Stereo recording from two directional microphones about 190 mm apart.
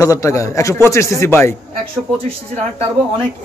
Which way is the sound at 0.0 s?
15° left (ahead or behind).